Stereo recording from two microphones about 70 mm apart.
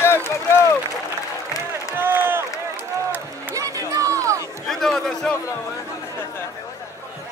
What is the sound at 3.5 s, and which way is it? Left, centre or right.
Music, right.